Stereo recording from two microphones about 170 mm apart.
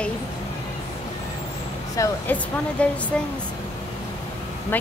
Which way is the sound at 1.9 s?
20° left (ahead or behind).